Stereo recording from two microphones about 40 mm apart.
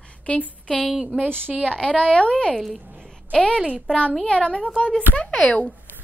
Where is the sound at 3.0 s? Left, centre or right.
Left.